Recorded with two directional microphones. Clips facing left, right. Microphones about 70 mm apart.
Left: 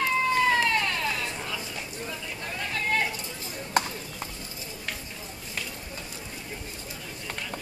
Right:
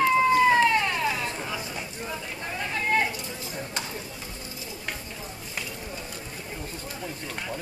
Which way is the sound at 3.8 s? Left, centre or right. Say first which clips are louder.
Left 12 dB; left.